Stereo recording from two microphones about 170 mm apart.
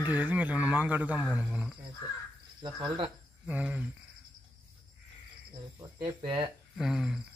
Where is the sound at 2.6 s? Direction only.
30° right (ahead or behind).